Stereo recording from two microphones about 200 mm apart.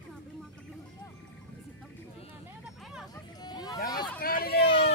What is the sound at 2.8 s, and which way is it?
Music, centre (ahead or behind).